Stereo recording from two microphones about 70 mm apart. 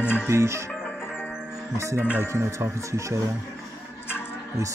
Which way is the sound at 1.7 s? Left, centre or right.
Right.